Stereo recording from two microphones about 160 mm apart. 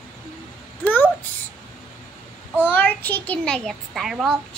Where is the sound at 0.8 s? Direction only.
10° left (ahead or behind).